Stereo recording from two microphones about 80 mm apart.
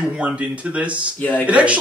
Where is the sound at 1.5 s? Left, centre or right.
Centre.